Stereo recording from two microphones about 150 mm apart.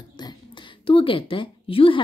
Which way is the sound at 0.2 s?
30° left (ahead or behind).